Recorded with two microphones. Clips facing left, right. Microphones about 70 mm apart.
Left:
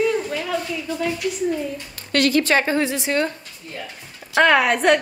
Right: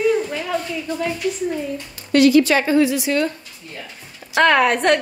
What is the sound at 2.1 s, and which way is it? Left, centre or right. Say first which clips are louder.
A woman's voice: right 5 dB; left.